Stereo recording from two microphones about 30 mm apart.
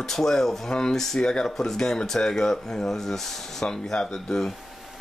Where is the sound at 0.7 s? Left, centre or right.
Left.